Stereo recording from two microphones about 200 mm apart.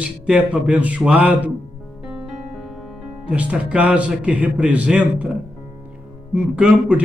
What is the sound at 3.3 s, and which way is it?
Speech, 5° right (ahead or behind).